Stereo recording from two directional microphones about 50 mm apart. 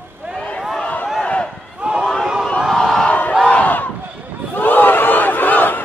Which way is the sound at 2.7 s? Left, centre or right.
Centre.